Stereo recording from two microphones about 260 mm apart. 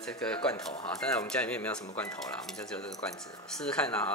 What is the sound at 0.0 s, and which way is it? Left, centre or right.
Speech, centre.